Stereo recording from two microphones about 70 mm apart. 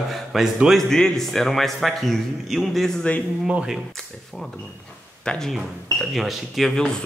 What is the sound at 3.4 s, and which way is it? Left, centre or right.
Speech, centre.